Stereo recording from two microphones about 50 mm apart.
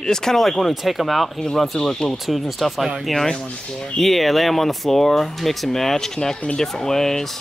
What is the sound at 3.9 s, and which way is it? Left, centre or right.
Speech, centre.